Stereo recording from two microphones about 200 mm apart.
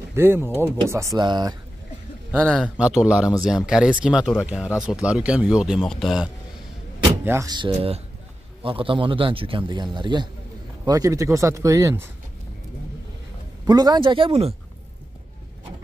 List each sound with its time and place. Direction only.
0.1 s a man's voice: 10° right (ahead or behind)
2.4 s speech: centre (ahead or behind)
7.2 s a man's voice: 15° right (ahead or behind)
13.7 s a man's voice: 20° right (ahead or behind)